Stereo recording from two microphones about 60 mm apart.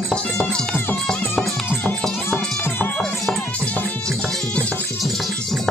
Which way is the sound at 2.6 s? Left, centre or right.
Left.